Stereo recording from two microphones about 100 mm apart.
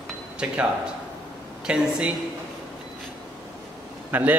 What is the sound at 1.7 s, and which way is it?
Speech, 10° right (ahead or behind).